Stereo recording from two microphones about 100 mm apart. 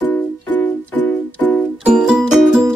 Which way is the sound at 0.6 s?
15° left (ahead or behind).